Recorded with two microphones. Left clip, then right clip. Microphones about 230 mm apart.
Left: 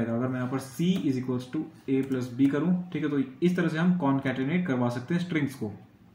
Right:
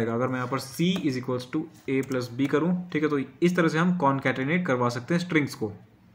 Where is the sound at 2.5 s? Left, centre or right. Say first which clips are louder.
Right 3 dB; right.